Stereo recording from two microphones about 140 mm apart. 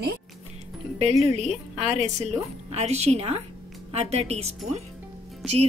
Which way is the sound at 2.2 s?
50° right (ahead or behind).